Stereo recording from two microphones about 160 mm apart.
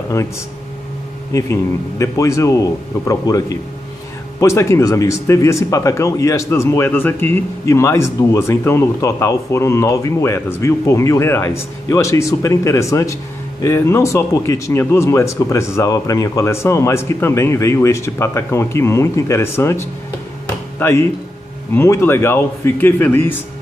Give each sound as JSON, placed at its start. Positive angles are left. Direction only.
{"t": 1.3, "sound": "a man's voice", "side_deg": 20}
{"t": 20.8, "sound": "speech", "side_deg": 15}